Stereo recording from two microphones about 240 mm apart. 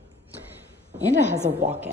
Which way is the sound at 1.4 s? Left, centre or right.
Right.